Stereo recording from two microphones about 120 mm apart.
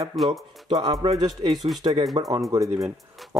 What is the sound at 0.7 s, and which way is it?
Music, 35° right (ahead or behind).